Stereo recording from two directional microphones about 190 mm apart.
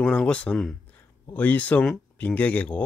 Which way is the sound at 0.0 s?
5° left (ahead or behind).